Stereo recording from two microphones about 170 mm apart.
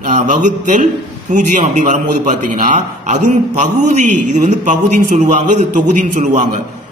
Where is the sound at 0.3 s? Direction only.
50° right (ahead or behind).